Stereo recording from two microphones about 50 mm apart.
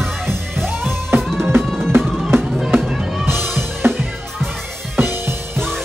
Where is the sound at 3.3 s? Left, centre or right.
Right.